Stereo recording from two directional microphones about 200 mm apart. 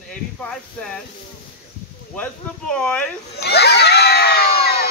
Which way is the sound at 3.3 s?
55° left (ahead or behind).